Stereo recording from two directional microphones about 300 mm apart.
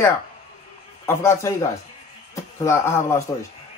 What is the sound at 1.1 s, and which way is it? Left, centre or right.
A man's voice, centre.